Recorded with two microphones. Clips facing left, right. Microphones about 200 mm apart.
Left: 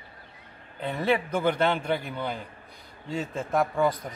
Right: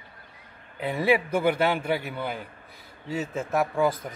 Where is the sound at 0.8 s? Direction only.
10° right (ahead or behind).